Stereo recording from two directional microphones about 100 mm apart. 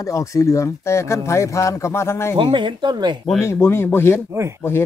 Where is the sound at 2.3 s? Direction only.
55° right (ahead or behind).